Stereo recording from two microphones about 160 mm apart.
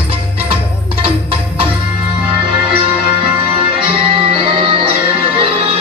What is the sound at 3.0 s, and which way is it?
Music, 35° right (ahead or behind).